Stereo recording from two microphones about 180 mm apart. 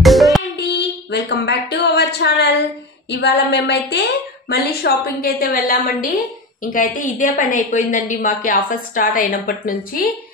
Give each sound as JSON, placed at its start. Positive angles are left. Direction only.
{"t": 0.0, "sound": "music", "side_deg": 0}
{"t": 0.6, "sound": "a sound", "side_deg": 70}
{"t": 3.1, "sound": "a woman's voice", "side_deg": 70}